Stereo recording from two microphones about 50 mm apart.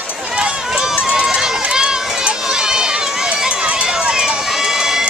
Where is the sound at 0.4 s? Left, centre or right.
Centre.